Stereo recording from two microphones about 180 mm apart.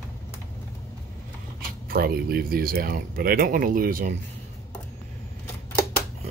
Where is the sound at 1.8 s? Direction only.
55° right (ahead or behind).